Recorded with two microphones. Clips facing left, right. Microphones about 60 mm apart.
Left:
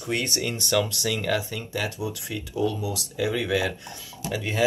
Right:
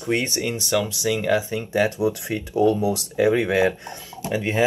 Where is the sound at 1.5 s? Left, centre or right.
Right.